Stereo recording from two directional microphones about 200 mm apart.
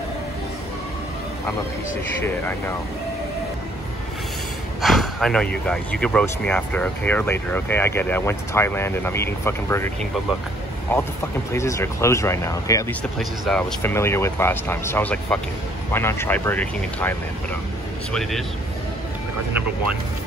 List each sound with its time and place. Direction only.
4.8 s speech: centre (ahead or behind)
13.2 s speech: 5° left (ahead or behind)
18.1 s a man's voice: centre (ahead or behind)